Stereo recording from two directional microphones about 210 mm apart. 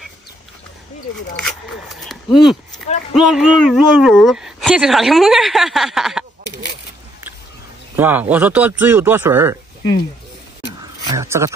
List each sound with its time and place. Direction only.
1.4 s speech: centre (ahead or behind)
7.9 s speech: 10° right (ahead or behind)
11.1 s speech: 15° right (ahead or behind)